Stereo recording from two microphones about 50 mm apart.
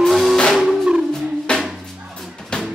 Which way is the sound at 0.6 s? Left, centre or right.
Centre.